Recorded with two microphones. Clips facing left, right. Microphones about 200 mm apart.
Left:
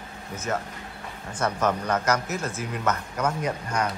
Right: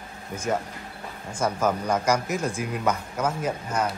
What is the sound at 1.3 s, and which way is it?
Speech, 10° right (ahead or behind).